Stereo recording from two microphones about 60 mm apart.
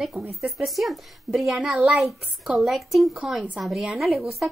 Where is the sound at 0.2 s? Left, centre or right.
Right.